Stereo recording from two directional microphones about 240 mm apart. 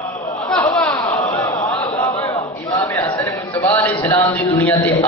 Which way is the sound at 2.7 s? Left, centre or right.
Centre.